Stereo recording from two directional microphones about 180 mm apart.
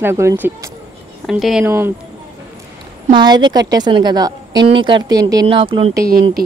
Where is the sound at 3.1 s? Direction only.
25° right (ahead or behind).